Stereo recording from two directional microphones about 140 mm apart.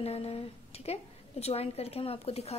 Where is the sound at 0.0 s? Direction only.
45° left (ahead or behind).